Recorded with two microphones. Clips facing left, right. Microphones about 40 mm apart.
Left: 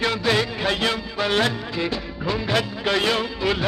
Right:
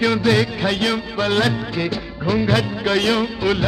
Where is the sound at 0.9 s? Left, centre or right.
Centre.